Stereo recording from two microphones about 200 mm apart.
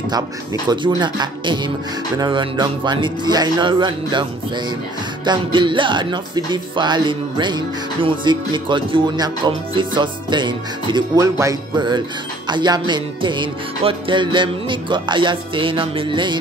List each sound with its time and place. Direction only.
0.7 s music: 20° right (ahead or behind)